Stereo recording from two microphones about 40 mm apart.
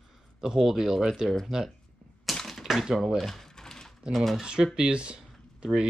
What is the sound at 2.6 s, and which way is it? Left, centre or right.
Speech, centre.